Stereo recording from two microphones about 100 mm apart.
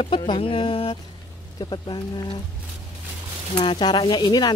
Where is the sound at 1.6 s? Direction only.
50° left (ahead or behind).